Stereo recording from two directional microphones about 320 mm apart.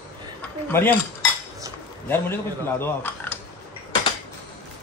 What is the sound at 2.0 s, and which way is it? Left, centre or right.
Speech, centre.